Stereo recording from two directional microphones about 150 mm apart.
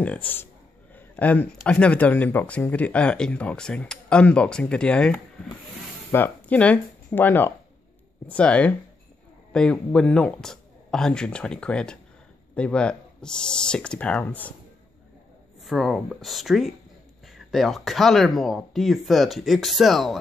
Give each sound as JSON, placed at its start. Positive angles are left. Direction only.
{"t": 0.0, "sound": "speech", "side_deg": 10}
{"t": 0.9, "sound": "a sound", "side_deg": 10}
{"t": 1.6, "sound": "speech", "side_deg": 10}
{"t": 15.6, "sound": "speech", "side_deg": 0}